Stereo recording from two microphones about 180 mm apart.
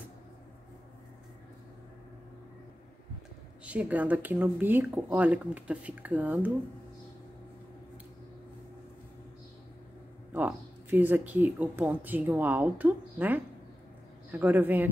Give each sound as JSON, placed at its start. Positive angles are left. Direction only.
{"t": 3.6, "sound": "speech", "side_deg": -10}
{"t": 10.3, "sound": "speech", "side_deg": -10}